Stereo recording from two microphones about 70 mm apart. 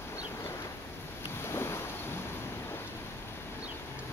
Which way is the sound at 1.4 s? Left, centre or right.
Left.